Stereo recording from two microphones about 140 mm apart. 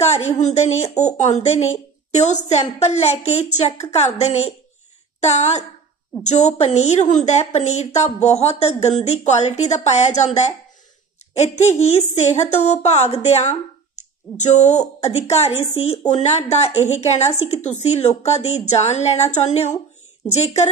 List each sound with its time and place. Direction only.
0.0 s a woman's voice: 50° left (ahead or behind)